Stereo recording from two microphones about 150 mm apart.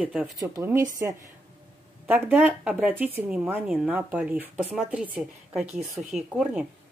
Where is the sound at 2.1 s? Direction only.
10° right (ahead or behind).